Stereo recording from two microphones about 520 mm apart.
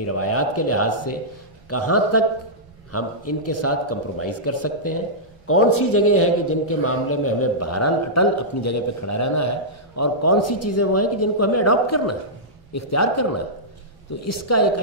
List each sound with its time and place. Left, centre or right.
0.0 s a man's voice: left